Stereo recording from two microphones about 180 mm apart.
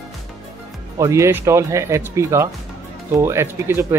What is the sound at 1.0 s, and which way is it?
Speech, 15° right (ahead or behind).